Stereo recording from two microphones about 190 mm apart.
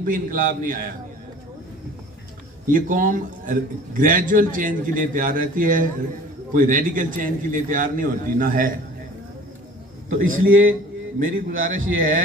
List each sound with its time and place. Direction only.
0.0 s a man's voice: 50° right (ahead or behind)
2.7 s a man's voice: 45° right (ahead or behind)
10.2 s a man's voice: 90° right
11.3 s a man's voice: 45° right (ahead or behind)